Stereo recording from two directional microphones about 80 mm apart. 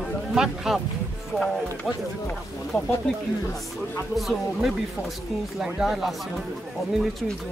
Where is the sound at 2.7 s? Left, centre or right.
Left.